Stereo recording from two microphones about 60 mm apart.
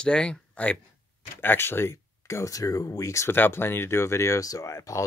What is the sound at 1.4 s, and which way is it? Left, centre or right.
Speech, left.